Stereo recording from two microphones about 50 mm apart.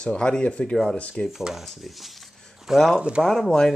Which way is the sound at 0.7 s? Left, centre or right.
Centre.